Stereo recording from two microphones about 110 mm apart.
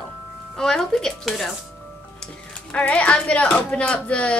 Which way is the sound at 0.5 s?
5° left (ahead or behind).